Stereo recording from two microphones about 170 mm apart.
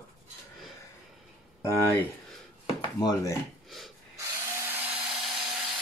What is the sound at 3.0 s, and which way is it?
Speech, 20° left (ahead or behind).